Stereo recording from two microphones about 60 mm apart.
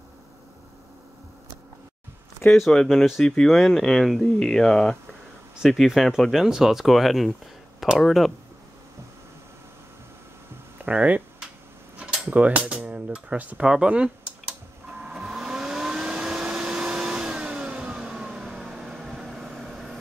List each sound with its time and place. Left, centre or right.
2.7 s speech: centre
5.6 s speech: centre
10.8 s speech: right
12.0 s cutlery: centre
13.6 s computer keyboard: centre
15.1 s vehicle: centre